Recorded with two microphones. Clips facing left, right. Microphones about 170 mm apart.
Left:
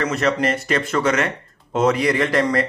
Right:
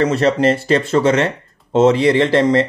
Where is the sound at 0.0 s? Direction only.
30° right (ahead or behind).